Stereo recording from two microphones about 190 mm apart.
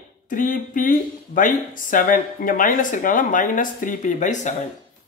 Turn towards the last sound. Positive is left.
turn(degrees=40)  # may be behind; listen again after turning